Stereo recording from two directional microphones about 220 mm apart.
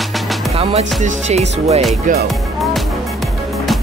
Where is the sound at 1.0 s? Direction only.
30° right (ahead or behind).